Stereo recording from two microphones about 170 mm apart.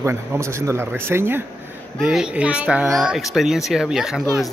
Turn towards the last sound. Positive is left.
turn(degrees=-5)  # may be behind; listen again after turning